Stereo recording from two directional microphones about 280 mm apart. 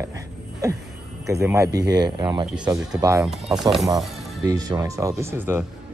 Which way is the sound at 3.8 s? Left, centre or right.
Centre.